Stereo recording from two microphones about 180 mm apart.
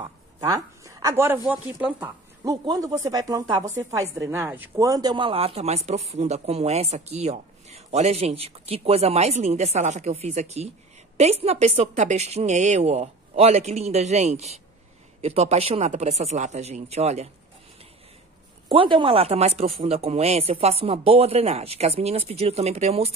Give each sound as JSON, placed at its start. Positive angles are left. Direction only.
{"t": 0.0, "sound": "speech", "side_deg": -20}
{"t": 2.4, "sound": "speech", "side_deg": -20}
{"t": 4.2, "sound": "speech", "side_deg": -10}
{"t": 18.7, "sound": "speech", "side_deg": -30}